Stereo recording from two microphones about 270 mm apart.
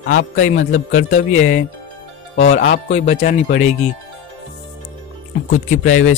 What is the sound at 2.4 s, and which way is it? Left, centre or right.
Speech, left.